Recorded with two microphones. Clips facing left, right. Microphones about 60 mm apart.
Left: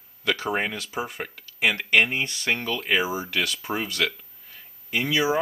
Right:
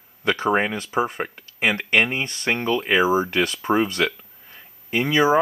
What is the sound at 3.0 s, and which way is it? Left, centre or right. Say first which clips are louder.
Speech: right 7 dB; right.